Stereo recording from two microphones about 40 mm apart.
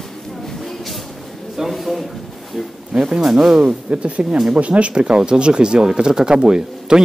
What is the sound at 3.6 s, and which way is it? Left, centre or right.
Speech, right.